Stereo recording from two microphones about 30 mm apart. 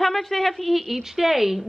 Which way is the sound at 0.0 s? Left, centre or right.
Centre.